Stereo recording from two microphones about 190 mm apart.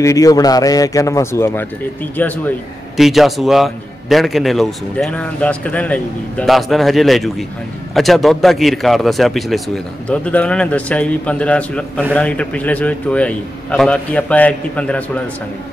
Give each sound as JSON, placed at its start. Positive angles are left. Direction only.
{"t": 0.0, "sound": "a man's voice", "side_deg": 15}